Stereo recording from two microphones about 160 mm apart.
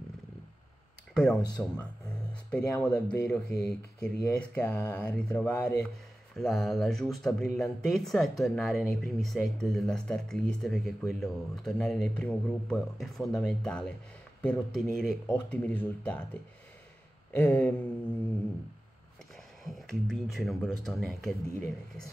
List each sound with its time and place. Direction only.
1.1 s speech: 5° left (ahead or behind)
17.3 s speech: 10° left (ahead or behind)
19.6 s speech: centre (ahead or behind)